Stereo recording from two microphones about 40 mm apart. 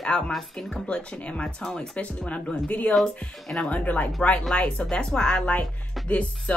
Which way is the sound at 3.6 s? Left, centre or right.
Left.